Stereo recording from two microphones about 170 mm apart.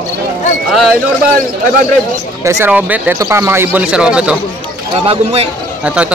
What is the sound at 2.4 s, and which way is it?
Speech, 15° right (ahead or behind).